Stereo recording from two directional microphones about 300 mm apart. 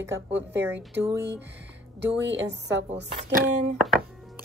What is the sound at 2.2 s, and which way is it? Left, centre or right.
Speech, right.